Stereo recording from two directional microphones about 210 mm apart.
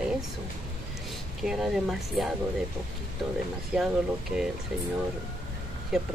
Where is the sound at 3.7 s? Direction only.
5° right (ahead or behind).